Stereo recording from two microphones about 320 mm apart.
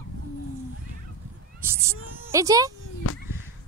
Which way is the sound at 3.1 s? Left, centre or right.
Left.